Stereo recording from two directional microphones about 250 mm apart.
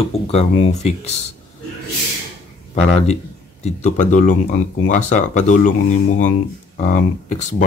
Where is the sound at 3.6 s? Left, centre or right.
Left.